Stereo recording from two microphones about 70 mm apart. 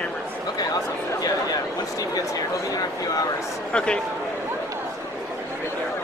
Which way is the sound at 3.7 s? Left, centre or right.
Centre.